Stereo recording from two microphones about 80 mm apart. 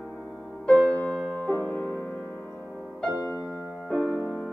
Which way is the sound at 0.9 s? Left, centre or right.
Left.